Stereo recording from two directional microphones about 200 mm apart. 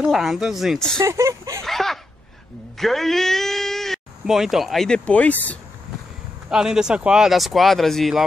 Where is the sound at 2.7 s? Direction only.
Centre (ahead or behind).